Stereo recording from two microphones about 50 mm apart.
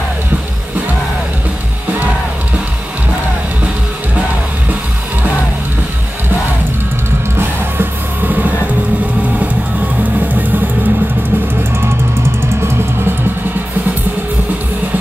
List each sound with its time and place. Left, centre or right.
7.3 s music: right
10.2 s music: right